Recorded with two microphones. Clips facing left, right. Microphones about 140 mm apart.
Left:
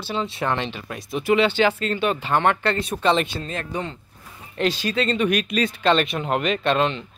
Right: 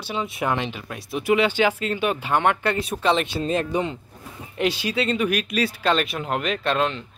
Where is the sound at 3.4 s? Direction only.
20° right (ahead or behind).